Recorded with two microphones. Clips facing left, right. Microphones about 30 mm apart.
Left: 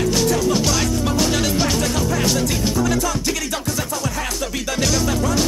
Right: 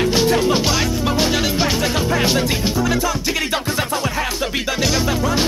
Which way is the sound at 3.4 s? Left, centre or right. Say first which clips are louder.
Right 4 dB; right.